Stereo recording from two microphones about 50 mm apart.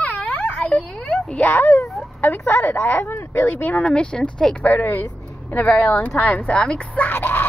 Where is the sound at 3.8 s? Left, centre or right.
Centre.